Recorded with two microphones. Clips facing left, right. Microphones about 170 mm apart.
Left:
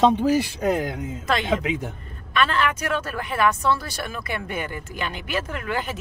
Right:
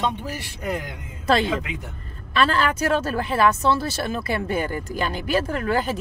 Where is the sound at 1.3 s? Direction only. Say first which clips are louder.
Right 2 dB; 30° right (ahead or behind).